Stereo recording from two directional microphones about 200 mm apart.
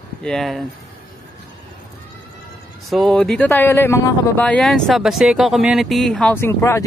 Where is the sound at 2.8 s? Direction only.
Centre (ahead or behind).